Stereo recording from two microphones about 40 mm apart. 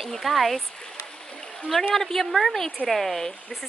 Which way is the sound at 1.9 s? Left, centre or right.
Centre.